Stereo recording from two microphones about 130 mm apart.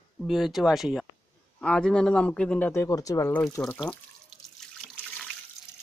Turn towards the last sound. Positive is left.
turn(degrees=0)  # may be behind; listen again after turning